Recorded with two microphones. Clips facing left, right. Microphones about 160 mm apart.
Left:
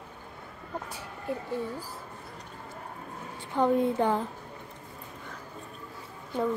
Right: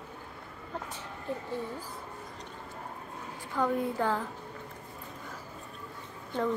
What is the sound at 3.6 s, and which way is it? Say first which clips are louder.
Speech: left 5 dB; 20° left (ahead or behind).